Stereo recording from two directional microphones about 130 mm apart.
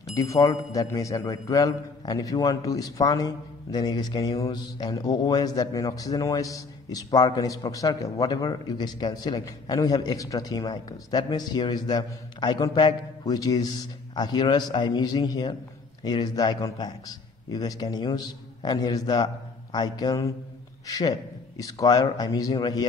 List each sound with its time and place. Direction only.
0.1 s a man's voice: 25° left (ahead or behind)